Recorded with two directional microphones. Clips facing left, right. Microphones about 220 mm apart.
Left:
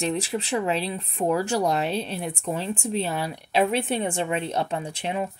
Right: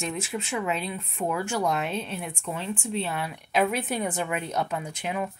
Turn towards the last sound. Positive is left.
turn(degrees=30)  # may be behind; listen again after turning